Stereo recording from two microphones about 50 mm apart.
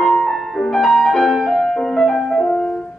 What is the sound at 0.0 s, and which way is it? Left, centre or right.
Music, centre.